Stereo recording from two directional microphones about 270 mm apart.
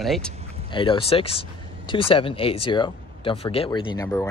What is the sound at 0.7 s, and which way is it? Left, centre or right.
Speech, centre.